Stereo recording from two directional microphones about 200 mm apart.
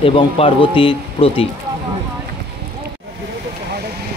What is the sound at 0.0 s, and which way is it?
Speech, 25° left (ahead or behind).